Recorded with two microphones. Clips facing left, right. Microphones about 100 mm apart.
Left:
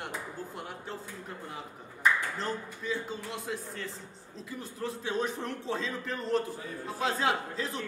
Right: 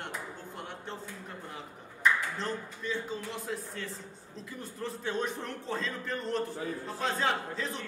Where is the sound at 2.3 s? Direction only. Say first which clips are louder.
Left 1 dB; 5° left (ahead or behind).